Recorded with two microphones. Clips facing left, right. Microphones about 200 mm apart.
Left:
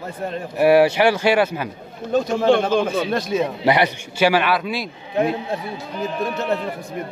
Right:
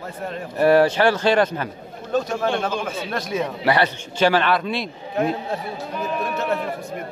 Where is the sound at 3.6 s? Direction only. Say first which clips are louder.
Right 1 dB; 15° left (ahead or behind).